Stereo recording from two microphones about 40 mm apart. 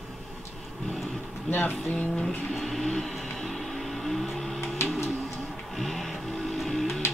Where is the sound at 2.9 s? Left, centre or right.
Centre.